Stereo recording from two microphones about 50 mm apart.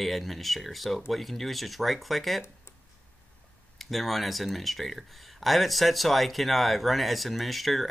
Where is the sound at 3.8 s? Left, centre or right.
Centre.